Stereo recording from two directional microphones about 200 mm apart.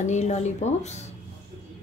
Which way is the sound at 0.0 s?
35° left (ahead or behind).